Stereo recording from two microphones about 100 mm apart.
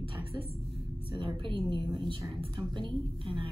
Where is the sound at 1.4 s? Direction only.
55° right (ahead or behind).